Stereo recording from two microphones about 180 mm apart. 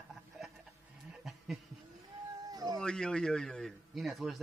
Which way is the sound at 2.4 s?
20° right (ahead or behind).